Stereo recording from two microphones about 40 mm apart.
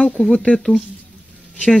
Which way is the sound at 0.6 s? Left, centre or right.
Centre.